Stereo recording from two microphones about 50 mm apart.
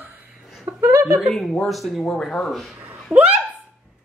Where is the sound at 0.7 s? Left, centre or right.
Right.